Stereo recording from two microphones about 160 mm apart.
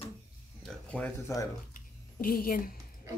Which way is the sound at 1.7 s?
65° left (ahead or behind).